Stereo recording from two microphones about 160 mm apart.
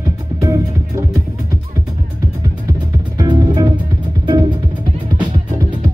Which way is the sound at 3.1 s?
20° right (ahead or behind).